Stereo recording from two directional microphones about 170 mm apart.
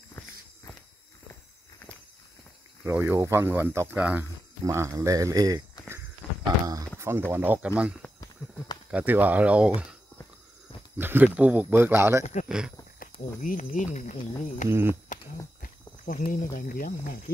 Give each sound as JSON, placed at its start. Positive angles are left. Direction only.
{"t": 2.8, "sound": "speech", "side_deg": -10}
{"t": 8.4, "sound": "a sound", "side_deg": 15}
{"t": 8.9, "sound": "speech", "side_deg": -10}
{"t": 11.0, "sound": "speech", "side_deg": -10}
{"t": 12.4, "sound": "speech", "side_deg": -5}
{"t": 13.0, "sound": "speech", "side_deg": 50}
{"t": 14.7, "sound": "speech", "side_deg": -15}
{"t": 15.6, "sound": "speech", "side_deg": 55}